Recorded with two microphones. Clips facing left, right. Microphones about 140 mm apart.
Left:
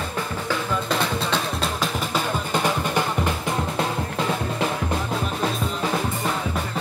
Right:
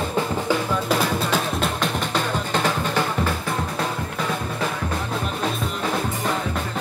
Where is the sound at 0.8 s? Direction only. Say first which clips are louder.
Right 2 dB; centre (ahead or behind).